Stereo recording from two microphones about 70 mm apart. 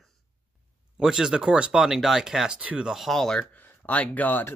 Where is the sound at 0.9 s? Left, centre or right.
Centre.